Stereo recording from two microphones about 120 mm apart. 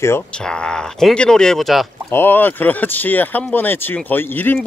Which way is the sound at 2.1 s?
15° left (ahead or behind).